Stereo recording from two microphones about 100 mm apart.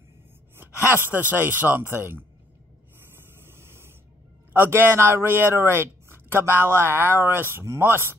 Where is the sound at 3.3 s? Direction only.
25° right (ahead or behind).